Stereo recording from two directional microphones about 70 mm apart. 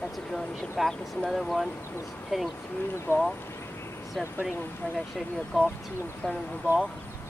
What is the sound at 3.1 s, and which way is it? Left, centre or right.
Speech, left.